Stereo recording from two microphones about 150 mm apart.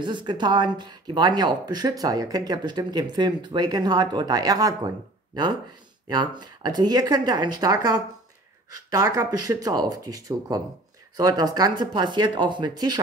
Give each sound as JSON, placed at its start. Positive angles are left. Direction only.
{"t": 0.0, "sound": "speech", "side_deg": -30}